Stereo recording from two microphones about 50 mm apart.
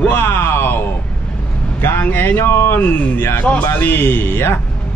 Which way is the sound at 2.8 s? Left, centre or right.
Left.